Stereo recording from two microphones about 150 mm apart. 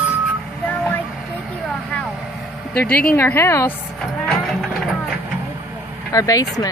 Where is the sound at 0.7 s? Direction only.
10° left (ahead or behind).